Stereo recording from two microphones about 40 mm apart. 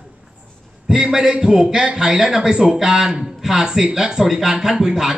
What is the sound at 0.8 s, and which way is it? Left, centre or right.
A man's voice, centre.